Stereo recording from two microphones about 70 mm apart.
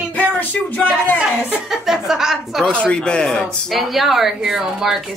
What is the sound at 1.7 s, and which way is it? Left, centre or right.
Speech, centre.